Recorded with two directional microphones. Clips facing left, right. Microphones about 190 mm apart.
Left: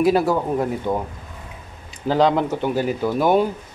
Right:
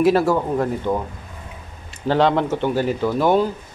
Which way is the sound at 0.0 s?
Centre (ahead or behind).